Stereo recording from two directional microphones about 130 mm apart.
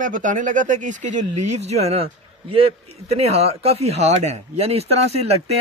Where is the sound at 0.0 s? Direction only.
85° right.